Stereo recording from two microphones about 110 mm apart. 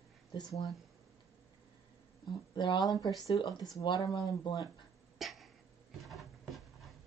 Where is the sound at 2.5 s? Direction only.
45° left (ahead or behind).